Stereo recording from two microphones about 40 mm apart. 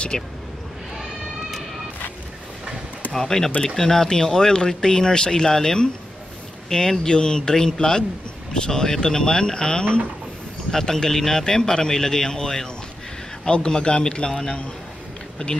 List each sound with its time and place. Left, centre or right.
0.1 s speech: centre
3.1 s speech: centre